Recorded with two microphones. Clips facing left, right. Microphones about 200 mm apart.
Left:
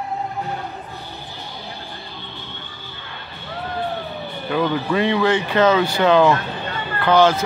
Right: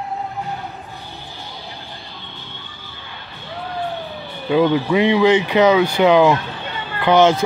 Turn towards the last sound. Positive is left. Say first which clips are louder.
# right 2 dB
turn(degrees=-20)  # may be behind; listen again after turning